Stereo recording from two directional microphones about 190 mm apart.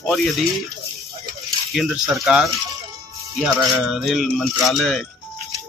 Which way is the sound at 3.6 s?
Centre (ahead or behind).